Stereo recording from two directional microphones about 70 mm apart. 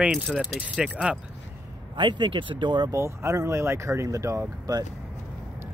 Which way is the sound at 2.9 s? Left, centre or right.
Right.